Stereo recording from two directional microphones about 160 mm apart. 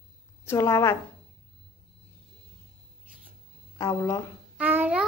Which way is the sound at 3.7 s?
20° left (ahead or behind).